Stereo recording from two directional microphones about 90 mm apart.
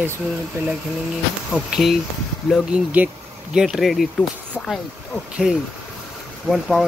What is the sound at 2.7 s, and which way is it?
Speech, 15° right (ahead or behind).